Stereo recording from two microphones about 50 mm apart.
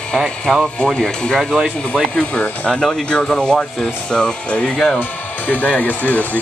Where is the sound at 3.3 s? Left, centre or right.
Centre.